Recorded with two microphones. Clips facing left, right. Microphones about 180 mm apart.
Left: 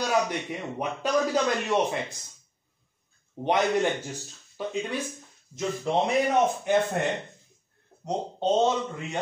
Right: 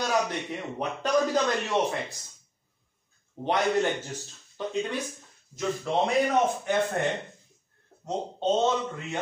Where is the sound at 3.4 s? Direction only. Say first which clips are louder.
Left 1 dB; 15° left (ahead or behind).